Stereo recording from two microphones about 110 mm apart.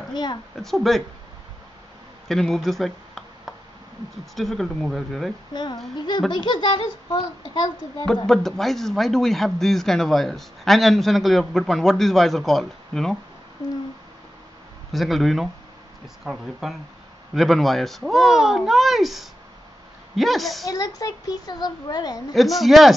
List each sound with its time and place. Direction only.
0.1 s a woman's voice: 40° left (ahead or behind)
0.6 s speech: centre (ahead or behind)
2.2 s a sound: 5° left (ahead or behind)
4.4 s speech: centre (ahead or behind)
5.5 s a child's voice: 40° left (ahead or behind)
8.3 s speech: 5° left (ahead or behind)
14.9 s speech: centre (ahead or behind)
20.6 s a child's voice: 35° left (ahead or behind)
22.3 s speech: centre (ahead or behind)